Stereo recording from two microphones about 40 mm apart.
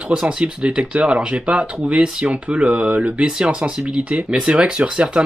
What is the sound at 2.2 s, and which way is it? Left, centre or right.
Speech, right.